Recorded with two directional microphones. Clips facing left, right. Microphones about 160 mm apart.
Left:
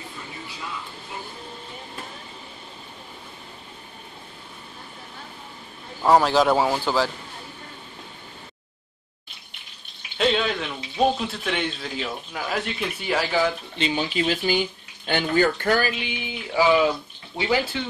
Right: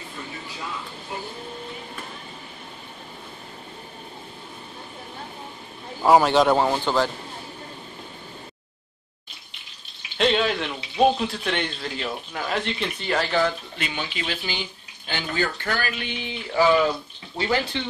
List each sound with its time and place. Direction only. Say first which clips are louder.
6.0 s speech: right 1 dB; centre (ahead or behind)
10.1 s a sound: right 1 dB; centre (ahead or behind)
11.1 s speech: right 1 dB; centre (ahead or behind)
13.7 s speech: left 6 dB; 30° left (ahead or behind)
14.0 s speech: left 7 dB; 40° left (ahead or behind)
16.0 s speech: even; 10° left (ahead or behind)